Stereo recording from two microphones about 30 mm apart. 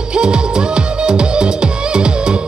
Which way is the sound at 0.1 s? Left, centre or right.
Right.